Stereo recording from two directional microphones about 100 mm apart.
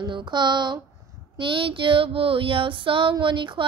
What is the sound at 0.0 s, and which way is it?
Speech, 50° right (ahead or behind).